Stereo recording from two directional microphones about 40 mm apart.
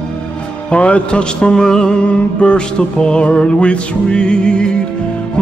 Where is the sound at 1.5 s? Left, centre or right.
Centre.